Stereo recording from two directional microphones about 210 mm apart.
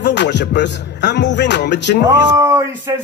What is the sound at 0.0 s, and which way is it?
Speech, 55° left (ahead or behind).